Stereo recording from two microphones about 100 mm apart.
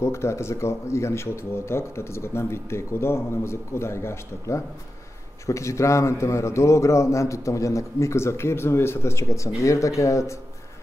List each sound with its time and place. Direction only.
0.0 s speech: 25° left (ahead or behind)